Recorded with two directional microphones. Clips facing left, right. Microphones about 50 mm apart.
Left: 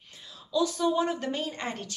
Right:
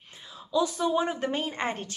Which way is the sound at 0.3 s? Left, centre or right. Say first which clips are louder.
Right 1 dB; right.